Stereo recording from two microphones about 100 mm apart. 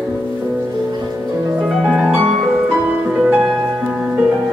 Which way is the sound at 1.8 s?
10° right (ahead or behind).